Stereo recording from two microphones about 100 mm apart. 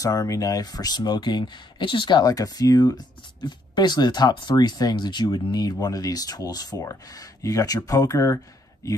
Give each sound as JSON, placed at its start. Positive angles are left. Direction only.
{"t": 0.0, "sound": "speech", "side_deg": 40}